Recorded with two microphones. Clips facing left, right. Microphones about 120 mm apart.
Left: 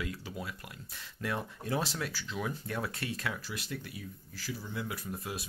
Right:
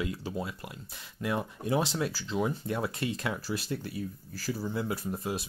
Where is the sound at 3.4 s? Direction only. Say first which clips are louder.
Right 7 dB; 35° right (ahead or behind).